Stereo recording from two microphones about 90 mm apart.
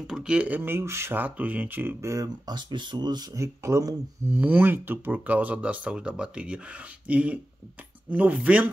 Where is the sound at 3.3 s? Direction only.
35° right (ahead or behind).